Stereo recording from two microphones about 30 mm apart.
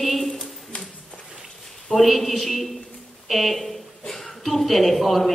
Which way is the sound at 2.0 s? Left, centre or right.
Centre.